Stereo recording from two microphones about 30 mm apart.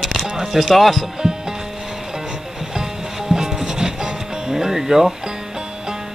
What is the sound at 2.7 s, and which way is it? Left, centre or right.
Music, centre.